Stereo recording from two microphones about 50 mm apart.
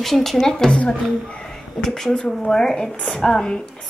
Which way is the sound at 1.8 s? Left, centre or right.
Centre.